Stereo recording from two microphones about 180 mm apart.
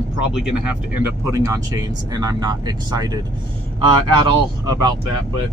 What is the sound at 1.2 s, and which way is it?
Speech, 15° right (ahead or behind).